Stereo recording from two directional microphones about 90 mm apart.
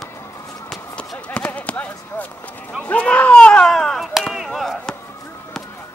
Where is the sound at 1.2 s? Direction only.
15° left (ahead or behind).